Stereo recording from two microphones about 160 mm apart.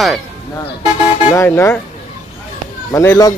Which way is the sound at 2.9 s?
20° left (ahead or behind).